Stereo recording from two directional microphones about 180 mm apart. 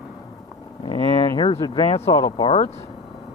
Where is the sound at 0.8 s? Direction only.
25° left (ahead or behind).